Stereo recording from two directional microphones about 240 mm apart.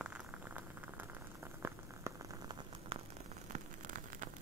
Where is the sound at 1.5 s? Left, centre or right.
Centre.